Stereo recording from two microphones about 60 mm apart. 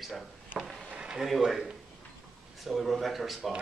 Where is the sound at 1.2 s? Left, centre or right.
Centre.